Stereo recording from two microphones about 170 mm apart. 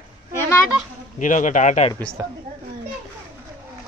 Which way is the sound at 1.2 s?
50° left (ahead or behind).